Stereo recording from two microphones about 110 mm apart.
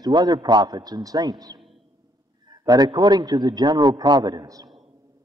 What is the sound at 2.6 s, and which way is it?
A man's voice, 35° right (ahead or behind).